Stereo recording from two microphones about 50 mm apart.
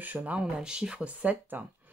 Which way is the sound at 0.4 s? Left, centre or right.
Centre.